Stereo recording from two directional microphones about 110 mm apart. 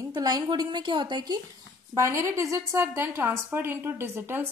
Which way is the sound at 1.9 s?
25° right (ahead or behind).